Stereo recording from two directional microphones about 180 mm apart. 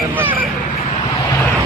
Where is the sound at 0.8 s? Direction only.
35° left (ahead or behind).